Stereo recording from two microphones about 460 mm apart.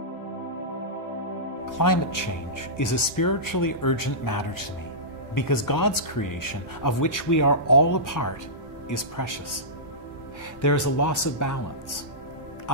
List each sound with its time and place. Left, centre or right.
1.8 s speech: left
10.6 s speech: left